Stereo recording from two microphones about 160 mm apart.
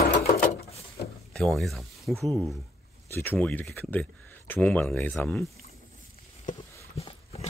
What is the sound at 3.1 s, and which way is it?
Speech, 10° left (ahead or behind).